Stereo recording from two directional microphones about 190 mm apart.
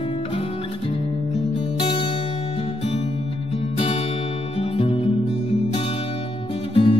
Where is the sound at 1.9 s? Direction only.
30° left (ahead or behind).